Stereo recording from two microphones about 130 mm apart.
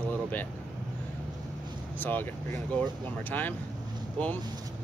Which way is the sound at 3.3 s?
15° left (ahead or behind).